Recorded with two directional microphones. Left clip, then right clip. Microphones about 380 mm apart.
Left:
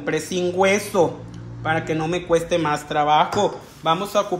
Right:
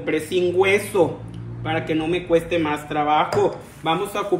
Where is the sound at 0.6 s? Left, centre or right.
Centre.